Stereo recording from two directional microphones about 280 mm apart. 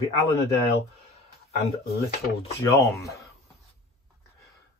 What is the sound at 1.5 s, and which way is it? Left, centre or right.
Speech, left.